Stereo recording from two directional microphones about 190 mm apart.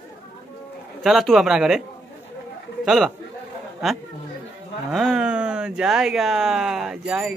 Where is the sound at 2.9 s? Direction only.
Centre (ahead or behind).